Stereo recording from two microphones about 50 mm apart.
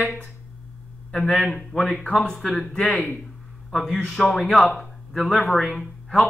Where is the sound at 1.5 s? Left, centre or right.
Centre.